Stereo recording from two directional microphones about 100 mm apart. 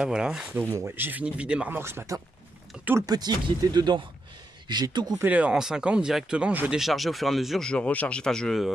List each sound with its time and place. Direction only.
0.0 s speech: 5° right (ahead or behind)
0.5 s speech: 20° right (ahead or behind)
1.7 s speech: 25° right (ahead or behind)
3.1 s speech: 45° right (ahead or behind)
5.2 s speech: 15° right (ahead or behind)
6.8 s speech: centre (ahead or behind)